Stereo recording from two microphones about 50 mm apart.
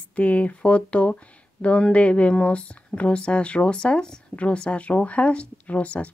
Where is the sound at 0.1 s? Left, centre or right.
Left.